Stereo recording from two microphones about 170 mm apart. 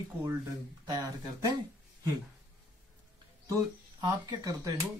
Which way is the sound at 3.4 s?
20° right (ahead or behind).